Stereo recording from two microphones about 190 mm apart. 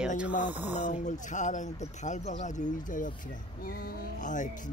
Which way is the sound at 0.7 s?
40° left (ahead or behind).